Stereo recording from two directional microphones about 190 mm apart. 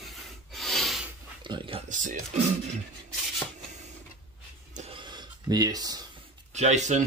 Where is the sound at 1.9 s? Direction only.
45° right (ahead or behind).